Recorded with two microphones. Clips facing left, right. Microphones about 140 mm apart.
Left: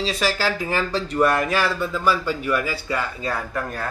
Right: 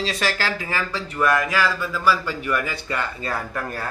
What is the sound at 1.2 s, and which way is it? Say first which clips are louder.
Speech: left 1 dB; 30° left (ahead or behind).